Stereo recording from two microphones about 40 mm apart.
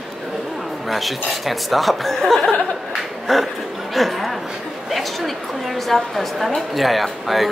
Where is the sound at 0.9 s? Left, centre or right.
Centre.